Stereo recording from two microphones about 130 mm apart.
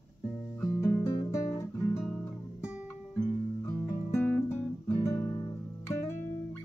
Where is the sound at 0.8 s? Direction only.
20° left (ahead or behind).